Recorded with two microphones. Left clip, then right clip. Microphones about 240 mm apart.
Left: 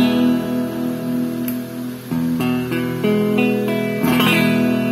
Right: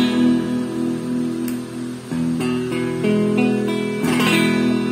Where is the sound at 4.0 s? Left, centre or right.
Left.